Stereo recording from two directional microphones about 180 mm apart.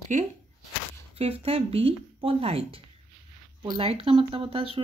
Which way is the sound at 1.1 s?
35° right (ahead or behind).